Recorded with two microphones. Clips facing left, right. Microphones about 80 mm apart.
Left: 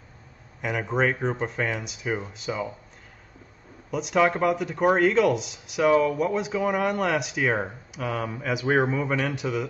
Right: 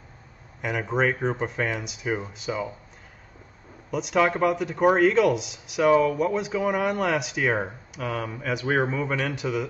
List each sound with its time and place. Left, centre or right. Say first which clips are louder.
0.6 s speech: even; centre
3.9 s speech: even; centre